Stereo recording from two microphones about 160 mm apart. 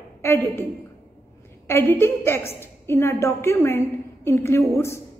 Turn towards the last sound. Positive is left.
turn(degrees=15)  # may be behind; listen again after turning